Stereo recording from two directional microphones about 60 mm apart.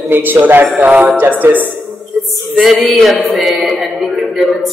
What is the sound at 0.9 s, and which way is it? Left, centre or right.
Music, right.